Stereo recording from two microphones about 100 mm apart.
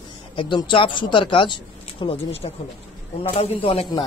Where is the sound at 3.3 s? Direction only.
70° left (ahead or behind).